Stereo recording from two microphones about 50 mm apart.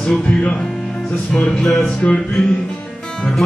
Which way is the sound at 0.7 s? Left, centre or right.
Centre.